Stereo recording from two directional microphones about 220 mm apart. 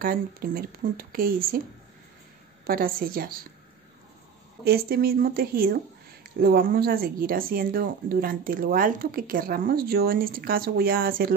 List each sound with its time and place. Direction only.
0.0 s speech: 40° right (ahead or behind)
2.6 s speech: 40° right (ahead or behind)
4.6 s speech: 45° right (ahead or behind)